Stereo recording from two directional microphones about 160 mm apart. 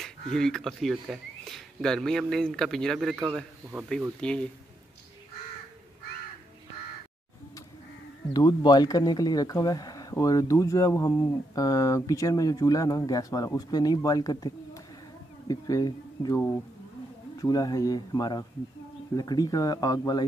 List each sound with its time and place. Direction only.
0.0 s speech: 5° left (ahead or behind)
3.3 s speech: 10° right (ahead or behind)
4.2 s speech: 5° left (ahead or behind)
8.3 s speech: 25° left (ahead or behind)
17.4 s speech: 25° left (ahead or behind)